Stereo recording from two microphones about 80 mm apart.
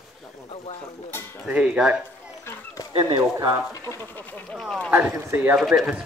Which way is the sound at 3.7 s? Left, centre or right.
Left.